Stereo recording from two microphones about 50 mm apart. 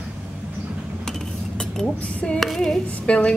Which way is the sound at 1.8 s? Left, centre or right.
Left.